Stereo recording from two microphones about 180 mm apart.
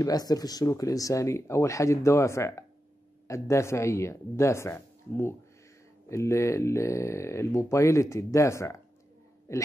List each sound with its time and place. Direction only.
0.0 s speech: 20° left (ahead or behind)